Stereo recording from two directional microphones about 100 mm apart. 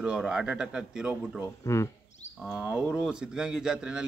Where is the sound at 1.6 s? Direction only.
30° left (ahead or behind).